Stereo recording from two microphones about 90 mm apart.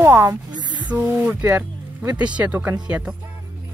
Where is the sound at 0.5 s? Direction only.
55° right (ahead or behind).